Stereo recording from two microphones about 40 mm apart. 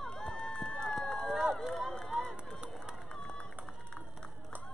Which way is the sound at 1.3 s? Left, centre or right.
Centre.